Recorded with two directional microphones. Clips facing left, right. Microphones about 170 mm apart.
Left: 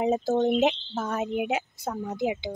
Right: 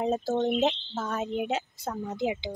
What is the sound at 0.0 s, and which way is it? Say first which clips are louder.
Speech: left 3 dB; 15° left (ahead or behind).